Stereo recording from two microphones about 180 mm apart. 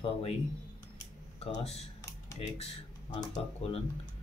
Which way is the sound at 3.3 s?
35° left (ahead or behind).